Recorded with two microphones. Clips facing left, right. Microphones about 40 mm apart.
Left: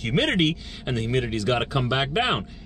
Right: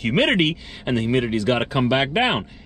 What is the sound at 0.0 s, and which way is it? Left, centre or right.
Speech, centre.